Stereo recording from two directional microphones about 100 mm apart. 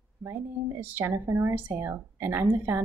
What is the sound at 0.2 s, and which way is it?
Speech, 20° right (ahead or behind).